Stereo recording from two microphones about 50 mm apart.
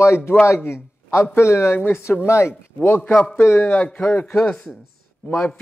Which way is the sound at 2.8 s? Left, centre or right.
Left.